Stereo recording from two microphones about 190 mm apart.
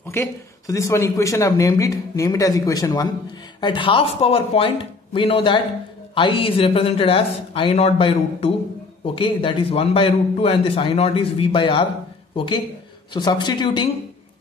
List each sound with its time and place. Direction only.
0.0 s a man's voice: 15° left (ahead or behind)